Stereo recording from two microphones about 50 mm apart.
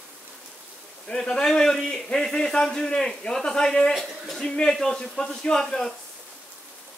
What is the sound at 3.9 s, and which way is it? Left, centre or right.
Speech, centre.